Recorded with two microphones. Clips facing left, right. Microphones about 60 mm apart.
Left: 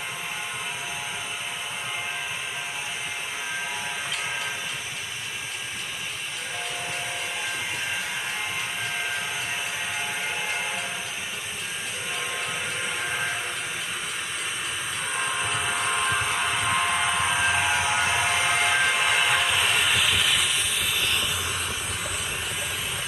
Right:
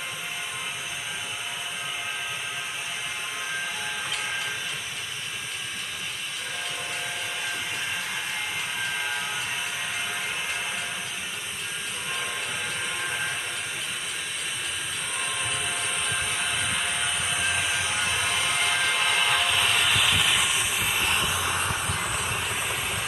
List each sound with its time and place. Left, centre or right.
17.1 s a sound: centre
17.8 s train: centre
20.8 s vehicle: right